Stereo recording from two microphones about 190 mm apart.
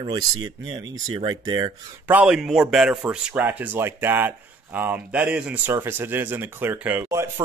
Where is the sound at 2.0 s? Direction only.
10° right (ahead or behind).